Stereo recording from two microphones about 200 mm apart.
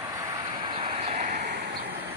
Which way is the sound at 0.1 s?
20° right (ahead or behind).